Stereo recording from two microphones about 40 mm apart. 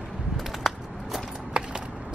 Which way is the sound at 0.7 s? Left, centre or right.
Centre.